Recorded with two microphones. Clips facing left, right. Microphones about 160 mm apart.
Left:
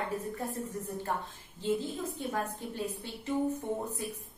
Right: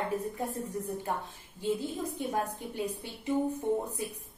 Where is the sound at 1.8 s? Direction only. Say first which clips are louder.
Right 2 dB; 15° right (ahead or behind).